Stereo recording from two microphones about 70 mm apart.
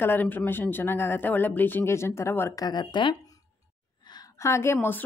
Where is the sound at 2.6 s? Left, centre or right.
Left.